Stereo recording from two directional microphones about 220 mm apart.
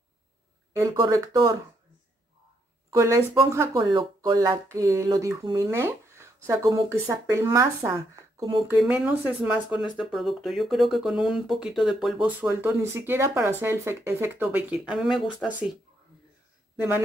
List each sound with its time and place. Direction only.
0.7 s speech: 15° right (ahead or behind)
2.9 s speech: 15° right (ahead or behind)
8.7 s speech: 5° right (ahead or behind)